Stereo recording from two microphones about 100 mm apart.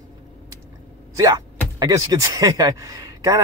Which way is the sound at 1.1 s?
35° right (ahead or behind).